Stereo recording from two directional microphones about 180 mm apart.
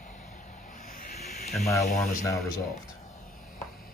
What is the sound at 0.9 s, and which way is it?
Snake, 40° left (ahead or behind).